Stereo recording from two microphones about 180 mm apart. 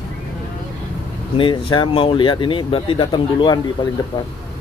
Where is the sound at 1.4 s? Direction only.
25° left (ahead or behind).